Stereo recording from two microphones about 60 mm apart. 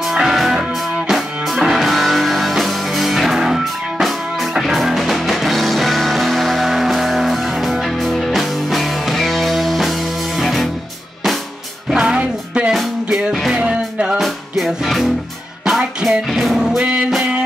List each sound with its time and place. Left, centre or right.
0.0 s music: centre
11.9 s music: centre
16.0 s music: centre